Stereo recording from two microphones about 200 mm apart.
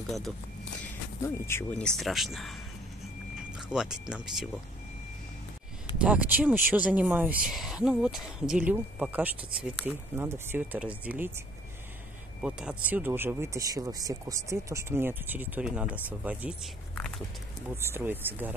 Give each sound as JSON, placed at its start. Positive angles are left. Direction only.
{"t": 0.8, "sound": "speech", "side_deg": 10}
{"t": 3.6, "sound": "speech", "side_deg": -5}
{"t": 5.9, "sound": "speech", "side_deg": -5}
{"t": 12.4, "sound": "speech", "side_deg": -5}
{"t": 17.7, "sound": "speech", "side_deg": -10}